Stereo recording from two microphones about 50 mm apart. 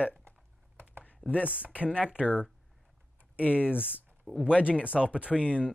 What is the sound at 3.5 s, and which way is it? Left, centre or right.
Speech, right.